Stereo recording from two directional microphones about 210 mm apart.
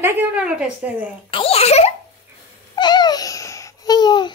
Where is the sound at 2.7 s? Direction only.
20° left (ahead or behind).